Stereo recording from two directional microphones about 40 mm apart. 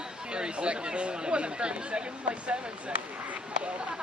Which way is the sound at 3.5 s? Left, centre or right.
Right.